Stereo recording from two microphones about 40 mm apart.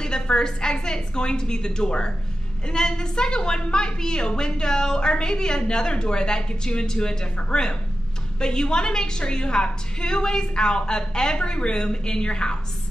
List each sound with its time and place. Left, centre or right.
0.0 s a woman's voice: centre